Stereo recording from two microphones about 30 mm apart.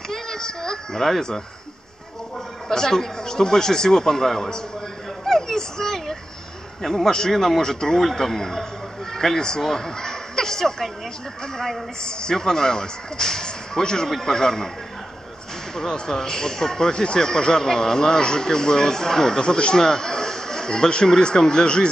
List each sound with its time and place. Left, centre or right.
0.1 s a sound: centre
2.7 s speech: centre
5.2 s a sound: centre
6.8 s a man's voice: centre
7.1 s a man's voice: left
7.3 s speech: centre
7.6 s speech: centre
12.0 s a man's voice: left
15.9 s a man's voice: centre
19.4 s a man's voice: left